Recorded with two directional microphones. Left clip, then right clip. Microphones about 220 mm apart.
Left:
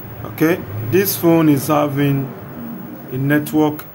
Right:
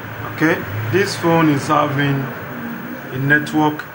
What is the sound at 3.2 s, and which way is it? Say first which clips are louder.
Speech: right 1 dB; 65° left (ahead or behind).